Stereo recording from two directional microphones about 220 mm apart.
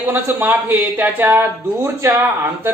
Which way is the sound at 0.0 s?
10° right (ahead or behind).